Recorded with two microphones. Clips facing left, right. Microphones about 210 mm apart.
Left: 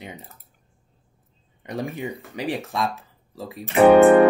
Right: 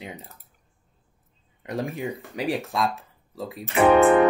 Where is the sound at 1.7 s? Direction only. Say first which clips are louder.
Even; centre (ahead or behind).